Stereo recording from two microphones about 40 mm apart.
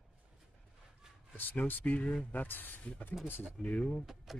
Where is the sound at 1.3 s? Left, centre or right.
Left.